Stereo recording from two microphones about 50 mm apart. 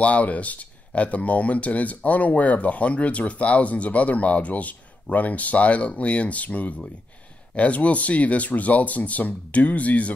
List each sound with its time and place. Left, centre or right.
0.0 s speech: left